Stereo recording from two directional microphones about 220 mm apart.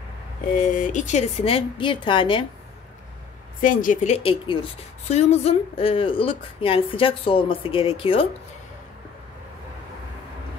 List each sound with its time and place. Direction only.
0.7 s speech: 35° left (ahead or behind)
3.6 s speech: 40° left (ahead or behind)